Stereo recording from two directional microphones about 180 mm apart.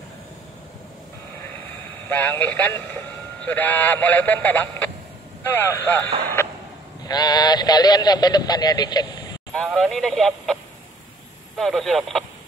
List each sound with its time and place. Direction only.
2.0 s speech: 10° left (ahead or behind)
6.4 s a sound: 10° left (ahead or behind)
7.1 s speech: 20° left (ahead or behind)
9.5 s speech: centre (ahead or behind)